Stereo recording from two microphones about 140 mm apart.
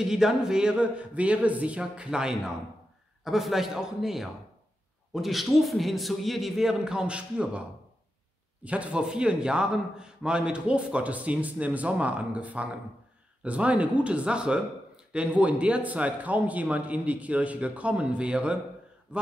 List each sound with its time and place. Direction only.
0.0 s a man's voice: 5° right (ahead or behind)
8.6 s a man's voice: 10° right (ahead or behind)